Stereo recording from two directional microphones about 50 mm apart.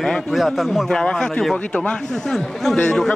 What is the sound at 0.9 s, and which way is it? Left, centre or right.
A man's voice, centre.